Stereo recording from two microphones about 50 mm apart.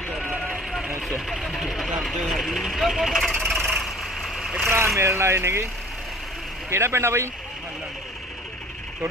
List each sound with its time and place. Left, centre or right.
1.0 s speech: centre
3.2 s speech: centre
3.4 s vehicle: centre
4.6 s speech: right
4.9 s speech: right
6.7 s speech: right